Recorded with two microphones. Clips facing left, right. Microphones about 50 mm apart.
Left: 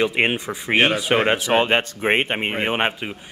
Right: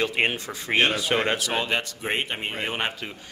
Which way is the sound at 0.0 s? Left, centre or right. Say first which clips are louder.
Left 4 dB; left.